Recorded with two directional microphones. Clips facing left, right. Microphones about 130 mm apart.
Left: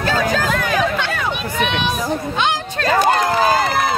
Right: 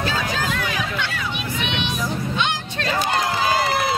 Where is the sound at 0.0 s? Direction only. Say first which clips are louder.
Left 6 dB; 50° left (ahead or behind).